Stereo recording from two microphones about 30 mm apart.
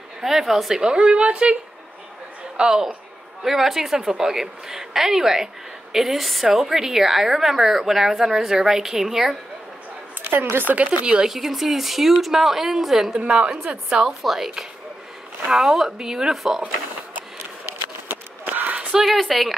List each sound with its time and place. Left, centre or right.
0.2 s a woman's voice: centre
0.8 s a woman's voice: right
3.4 s a woman's voice: centre
6.4 s a woman's voice: centre
10.2 s a woman's voice: right
11.2 s a woman's voice: centre
13.9 s a woman's voice: right
14.2 s a woman's voice: centre
15.5 s a woman's voice: centre
18.5 s a sound: right
19.0 s speech: centre